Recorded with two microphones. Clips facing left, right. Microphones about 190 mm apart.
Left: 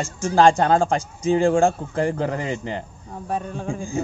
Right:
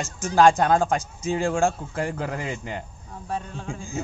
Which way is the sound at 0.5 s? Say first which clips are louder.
Left 2 dB; 15° left (ahead or behind).